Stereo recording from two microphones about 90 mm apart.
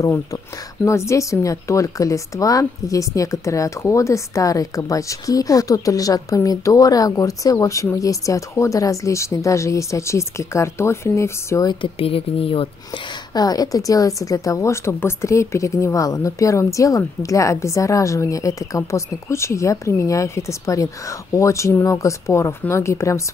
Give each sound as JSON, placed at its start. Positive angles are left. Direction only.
{"t": 0.0, "sound": "a woman's voice", "side_deg": 35}
{"t": 11.8, "sound": "speech", "side_deg": 90}
{"t": 13.3, "sound": "a woman's voice", "side_deg": 45}